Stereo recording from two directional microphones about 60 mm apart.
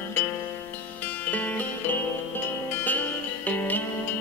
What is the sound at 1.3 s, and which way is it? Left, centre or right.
Music, left.